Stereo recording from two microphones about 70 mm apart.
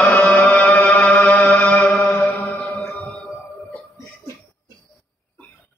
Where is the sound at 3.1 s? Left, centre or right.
Centre.